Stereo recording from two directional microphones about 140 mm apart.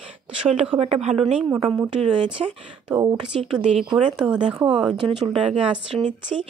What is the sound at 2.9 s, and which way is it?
Speech, 30° right (ahead or behind).